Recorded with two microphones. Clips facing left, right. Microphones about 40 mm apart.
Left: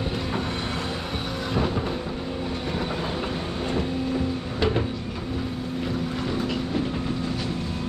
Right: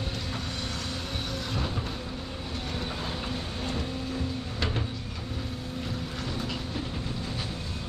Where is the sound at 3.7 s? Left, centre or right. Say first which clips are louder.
Left 8 dB; centre.